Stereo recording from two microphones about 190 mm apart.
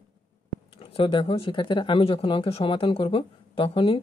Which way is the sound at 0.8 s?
30° left (ahead or behind).